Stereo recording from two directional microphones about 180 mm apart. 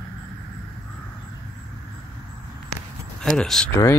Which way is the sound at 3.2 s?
Centre (ahead or behind).